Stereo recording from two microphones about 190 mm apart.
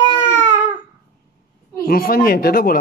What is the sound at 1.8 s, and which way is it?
Speech, 50° left (ahead or behind).